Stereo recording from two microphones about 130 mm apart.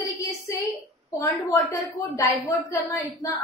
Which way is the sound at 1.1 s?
25° left (ahead or behind).